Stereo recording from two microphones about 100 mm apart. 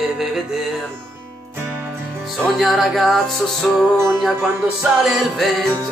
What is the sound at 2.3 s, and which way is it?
Music, centre (ahead or behind).